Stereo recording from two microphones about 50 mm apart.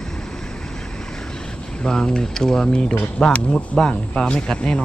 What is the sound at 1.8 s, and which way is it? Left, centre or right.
Speech, centre.